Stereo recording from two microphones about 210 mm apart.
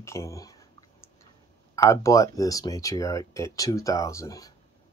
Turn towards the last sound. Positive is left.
turn(degrees=15)  # may be behind; listen again after turning